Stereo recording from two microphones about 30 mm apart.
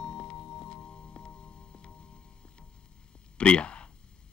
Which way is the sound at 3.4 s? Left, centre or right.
Left.